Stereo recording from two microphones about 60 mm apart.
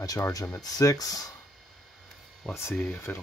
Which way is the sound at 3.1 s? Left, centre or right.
Left.